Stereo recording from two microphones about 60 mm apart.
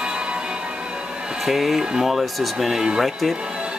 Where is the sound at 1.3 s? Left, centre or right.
Centre.